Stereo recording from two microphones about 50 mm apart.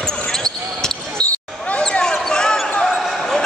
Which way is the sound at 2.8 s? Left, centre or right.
Centre.